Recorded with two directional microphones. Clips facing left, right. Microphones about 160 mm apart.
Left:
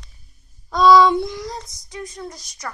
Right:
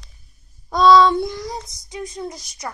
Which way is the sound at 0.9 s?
10° left (ahead or behind).